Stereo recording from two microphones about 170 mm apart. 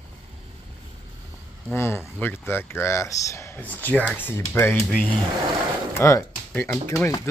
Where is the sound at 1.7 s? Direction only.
15° left (ahead or behind).